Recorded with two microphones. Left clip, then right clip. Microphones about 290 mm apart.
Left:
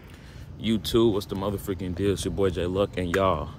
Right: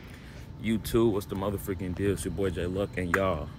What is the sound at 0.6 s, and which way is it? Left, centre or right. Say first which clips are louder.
Speech: left 4 dB; centre.